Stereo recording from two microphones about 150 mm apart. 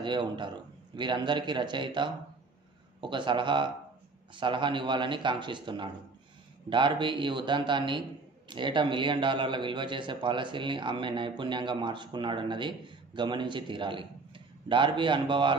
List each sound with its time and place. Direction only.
0.0 s a man's voice: 30° right (ahead or behind)